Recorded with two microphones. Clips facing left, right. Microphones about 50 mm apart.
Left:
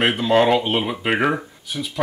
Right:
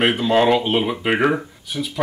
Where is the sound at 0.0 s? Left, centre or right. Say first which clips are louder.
Even; centre.